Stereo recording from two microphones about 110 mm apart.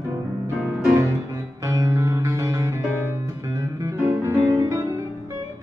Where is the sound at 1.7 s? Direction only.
30° right (ahead or behind).